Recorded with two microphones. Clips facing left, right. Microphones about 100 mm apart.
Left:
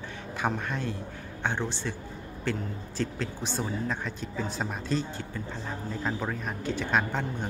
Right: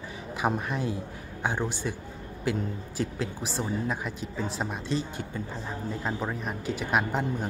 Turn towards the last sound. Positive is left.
turn(degrees=-10)  # may be behind; listen again after turning